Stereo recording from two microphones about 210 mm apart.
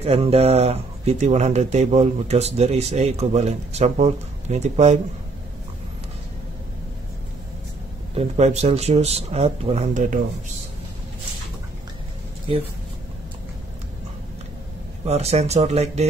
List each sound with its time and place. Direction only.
0.0 s speech: 30° right (ahead or behind)
8.1 s speech: 30° right (ahead or behind)
15.0 s speech: 30° right (ahead or behind)